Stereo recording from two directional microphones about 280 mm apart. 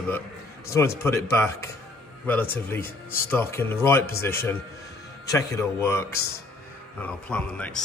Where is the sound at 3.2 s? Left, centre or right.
Centre.